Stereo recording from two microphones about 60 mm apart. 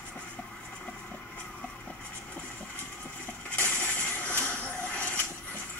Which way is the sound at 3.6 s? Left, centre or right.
Left.